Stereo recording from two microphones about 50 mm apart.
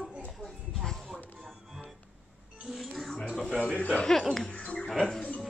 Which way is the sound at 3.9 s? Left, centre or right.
Centre.